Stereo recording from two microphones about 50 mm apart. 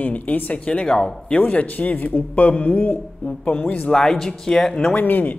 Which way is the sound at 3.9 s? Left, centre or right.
Centre.